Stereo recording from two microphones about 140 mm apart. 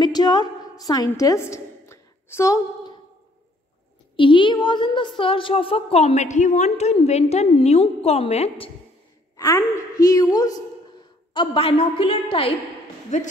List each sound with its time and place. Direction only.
0.0 s a sound: 30° left (ahead or behind)
4.2 s a woman's voice: 35° left (ahead or behind)
9.4 s a woman's voice: 25° left (ahead or behind)
11.3 s a woman's voice: 40° left (ahead or behind)
13.1 s speech: 55° left (ahead or behind)